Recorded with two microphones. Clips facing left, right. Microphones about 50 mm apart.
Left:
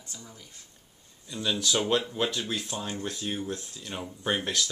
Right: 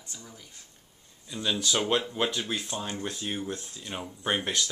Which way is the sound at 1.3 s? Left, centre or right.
Centre.